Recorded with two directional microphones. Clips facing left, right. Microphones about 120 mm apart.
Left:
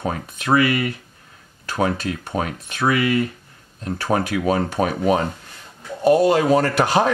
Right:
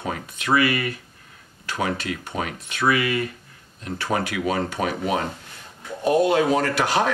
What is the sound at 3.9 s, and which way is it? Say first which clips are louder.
Speech: left 4 dB; 40° left (ahead or behind).